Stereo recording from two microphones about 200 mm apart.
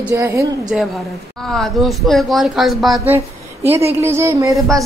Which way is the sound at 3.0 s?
10° right (ahead or behind).